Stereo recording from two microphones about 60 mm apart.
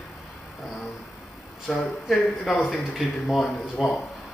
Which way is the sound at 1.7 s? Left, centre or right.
Centre.